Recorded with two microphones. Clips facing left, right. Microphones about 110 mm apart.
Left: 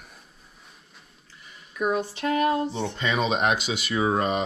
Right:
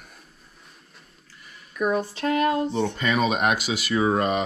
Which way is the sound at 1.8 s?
50° right (ahead or behind).